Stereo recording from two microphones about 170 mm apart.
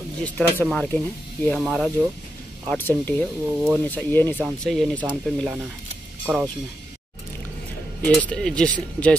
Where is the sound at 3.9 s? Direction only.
10° left (ahead or behind).